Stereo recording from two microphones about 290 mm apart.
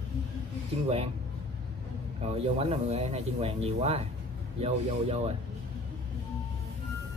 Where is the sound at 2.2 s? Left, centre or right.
Centre.